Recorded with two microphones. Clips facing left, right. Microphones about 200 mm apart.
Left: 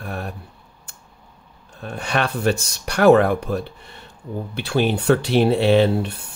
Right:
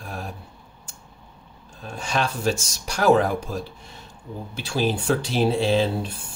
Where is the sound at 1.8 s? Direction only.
60° left (ahead or behind).